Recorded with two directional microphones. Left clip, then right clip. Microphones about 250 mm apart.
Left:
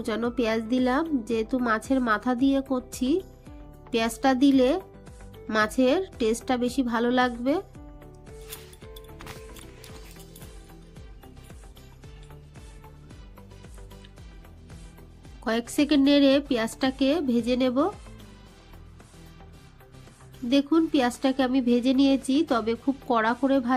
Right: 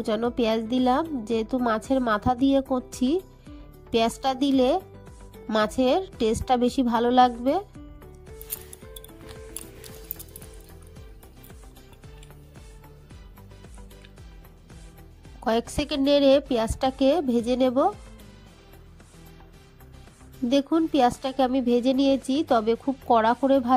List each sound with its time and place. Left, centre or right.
0.0 s speech: right
15.4 s speech: right
20.4 s speech: right